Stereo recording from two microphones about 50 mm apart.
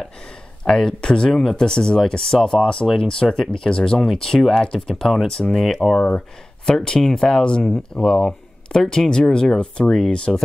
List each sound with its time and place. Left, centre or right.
0.7 s speech: centre
1.3 s speech: centre
1.6 s speech: centre
2.6 s speech: centre